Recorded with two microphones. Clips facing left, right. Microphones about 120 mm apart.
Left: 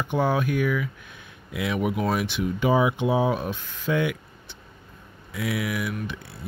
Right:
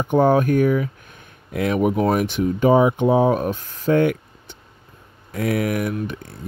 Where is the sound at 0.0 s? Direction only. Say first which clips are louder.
Right 8 dB; 45° right (ahead or behind).